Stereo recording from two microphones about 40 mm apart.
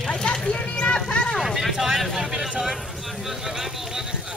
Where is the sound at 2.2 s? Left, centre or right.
Centre.